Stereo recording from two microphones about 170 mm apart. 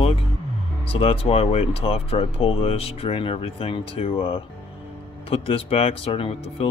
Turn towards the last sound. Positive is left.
turn(degrees=35)  # may be behind; listen again after turning